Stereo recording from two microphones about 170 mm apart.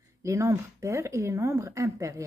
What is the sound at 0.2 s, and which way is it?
Speech, 15° right (ahead or behind).